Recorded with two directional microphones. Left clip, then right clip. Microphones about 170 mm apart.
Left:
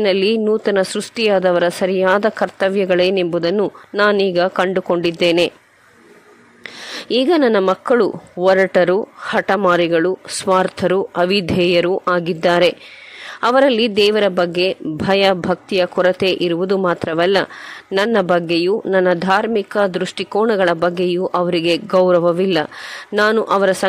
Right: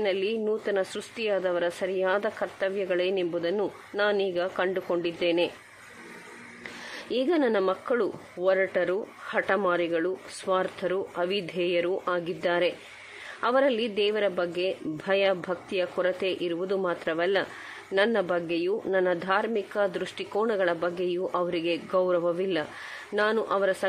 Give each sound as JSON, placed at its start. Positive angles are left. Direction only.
{"t": 0.0, "sound": "a woman's voice", "side_deg": 45}
{"t": 6.9, "sound": "speech", "side_deg": 40}